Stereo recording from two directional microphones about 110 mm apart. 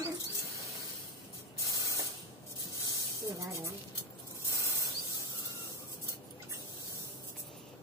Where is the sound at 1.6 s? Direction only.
30° right (ahead or behind).